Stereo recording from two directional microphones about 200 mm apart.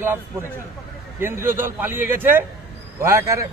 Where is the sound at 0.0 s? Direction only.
10° right (ahead or behind).